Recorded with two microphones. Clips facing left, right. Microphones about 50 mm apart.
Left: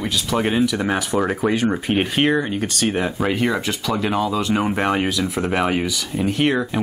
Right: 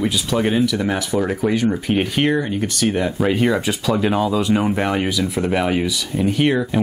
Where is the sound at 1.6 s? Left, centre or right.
Left; by 4.7 s centre.